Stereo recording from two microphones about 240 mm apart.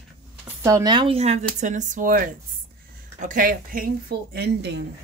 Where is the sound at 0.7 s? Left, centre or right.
Centre; by 4.8 s right.